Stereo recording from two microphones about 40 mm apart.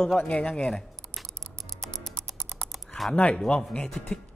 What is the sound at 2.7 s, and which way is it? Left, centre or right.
Typing, centre.